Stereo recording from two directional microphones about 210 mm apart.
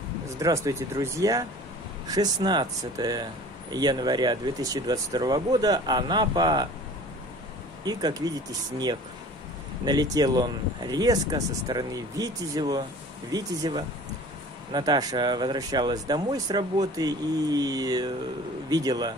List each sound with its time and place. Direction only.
0.4 s speech: 15° right (ahead or behind)
7.8 s speech: 20° right (ahead or behind)
9.8 s speech: 20° right (ahead or behind)